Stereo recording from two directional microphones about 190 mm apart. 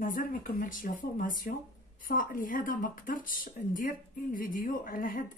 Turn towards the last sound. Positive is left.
turn(degrees=45)  # may be behind; listen again after turning